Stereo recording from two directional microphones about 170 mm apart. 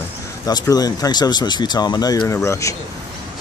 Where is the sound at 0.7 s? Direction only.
20° left (ahead or behind).